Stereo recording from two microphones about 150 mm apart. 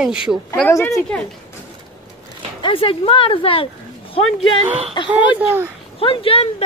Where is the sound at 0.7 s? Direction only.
20° left (ahead or behind).